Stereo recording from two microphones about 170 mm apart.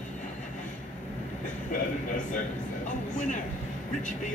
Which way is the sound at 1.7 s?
50° left (ahead or behind).